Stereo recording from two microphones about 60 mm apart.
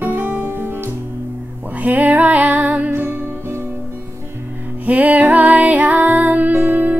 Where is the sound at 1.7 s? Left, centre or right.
Right.